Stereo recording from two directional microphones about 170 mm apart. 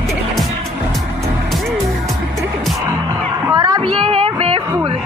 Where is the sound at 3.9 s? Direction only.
35° right (ahead or behind).